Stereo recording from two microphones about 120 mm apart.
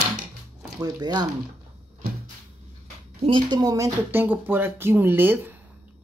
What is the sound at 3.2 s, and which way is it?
Speech, 40° right (ahead or behind).